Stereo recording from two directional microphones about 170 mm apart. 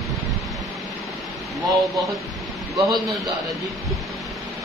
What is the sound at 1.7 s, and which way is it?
Speech, centre (ahead or behind).